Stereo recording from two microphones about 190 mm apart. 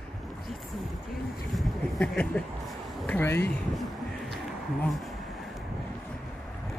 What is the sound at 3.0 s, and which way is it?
Speech, 10° left (ahead or behind).